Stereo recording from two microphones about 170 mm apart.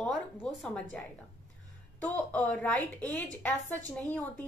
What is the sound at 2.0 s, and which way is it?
A woman's voice, 10° left (ahead or behind).